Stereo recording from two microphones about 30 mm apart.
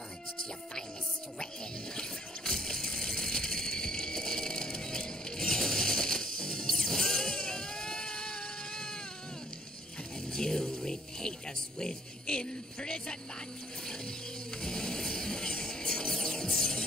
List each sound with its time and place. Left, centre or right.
2.0 s a sound: centre
3.0 s ratchet: centre
5.5 s music: centre
10.3 s music: left
12.4 s a sound: left
14.6 s music: left